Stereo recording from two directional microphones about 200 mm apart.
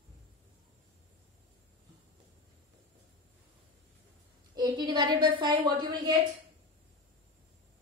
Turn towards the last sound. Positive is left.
turn(degrees=-25)  # may be behind; listen again after turning